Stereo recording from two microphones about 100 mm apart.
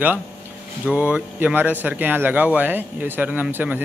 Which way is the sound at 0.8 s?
15° right (ahead or behind).